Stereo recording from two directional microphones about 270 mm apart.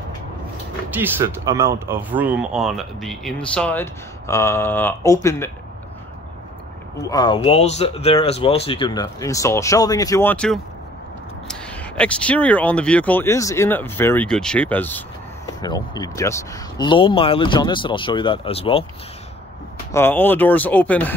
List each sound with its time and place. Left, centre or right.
0.9 s speech: centre
7.1 s speech: centre
19.9 s speech: centre